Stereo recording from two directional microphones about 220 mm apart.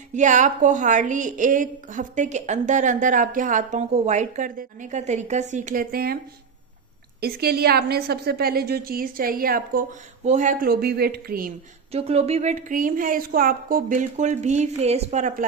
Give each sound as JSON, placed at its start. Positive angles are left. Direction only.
{"t": 0.1, "sound": "a woman's voice", "side_deg": -35}
{"t": 7.2, "sound": "a woman's voice", "side_deg": -45}
{"t": 11.9, "sound": "a woman's voice", "side_deg": -25}